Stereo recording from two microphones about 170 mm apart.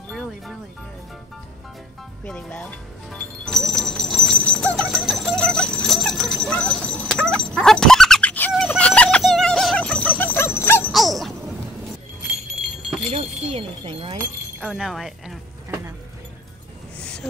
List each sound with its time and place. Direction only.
2.2 s music: 5° left (ahead or behind)
8.5 s jingle bell: 5° left (ahead or behind)
10.9 s dog: centre (ahead or behind)
13.1 s a sound: 35° right (ahead or behind)
14.6 s speech: 5° right (ahead or behind)
17.0 s a sound: 5° left (ahead or behind)